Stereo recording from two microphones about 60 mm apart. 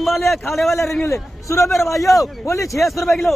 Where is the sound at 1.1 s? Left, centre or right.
Left.